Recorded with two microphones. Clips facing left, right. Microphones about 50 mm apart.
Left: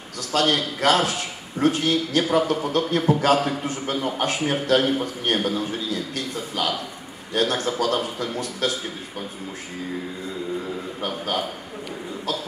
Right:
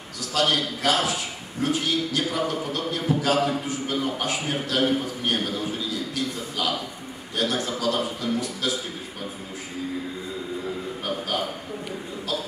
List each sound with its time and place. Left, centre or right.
0.3 s a man's voice: left